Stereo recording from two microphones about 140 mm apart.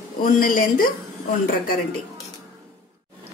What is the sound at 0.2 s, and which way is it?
Speech, 90° left.